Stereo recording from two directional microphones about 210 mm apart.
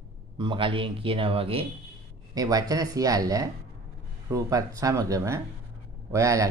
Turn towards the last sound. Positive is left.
turn(degrees=-15)  # may be behind; listen again after turning